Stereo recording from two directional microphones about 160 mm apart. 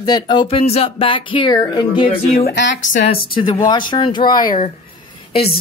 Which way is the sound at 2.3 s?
70° left (ahead or behind).